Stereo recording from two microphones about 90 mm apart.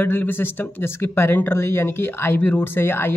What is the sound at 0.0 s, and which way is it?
Speech, 25° left (ahead or behind).